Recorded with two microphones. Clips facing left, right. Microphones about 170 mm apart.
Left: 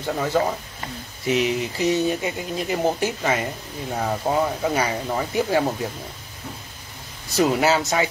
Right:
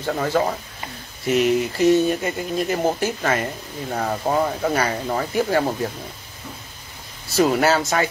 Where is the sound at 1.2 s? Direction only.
50° right (ahead or behind).